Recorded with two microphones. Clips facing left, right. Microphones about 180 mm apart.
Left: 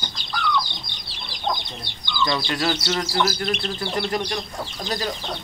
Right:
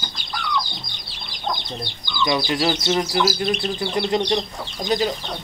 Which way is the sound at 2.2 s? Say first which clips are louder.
Right 3 dB; 20° right (ahead or behind).